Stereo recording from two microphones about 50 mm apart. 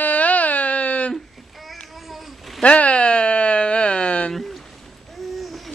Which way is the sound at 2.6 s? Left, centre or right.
Left.